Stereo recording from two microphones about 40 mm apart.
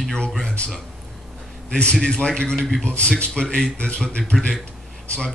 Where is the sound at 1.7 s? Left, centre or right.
Left.